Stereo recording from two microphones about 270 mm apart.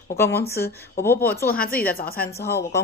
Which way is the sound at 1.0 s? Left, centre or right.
Centre.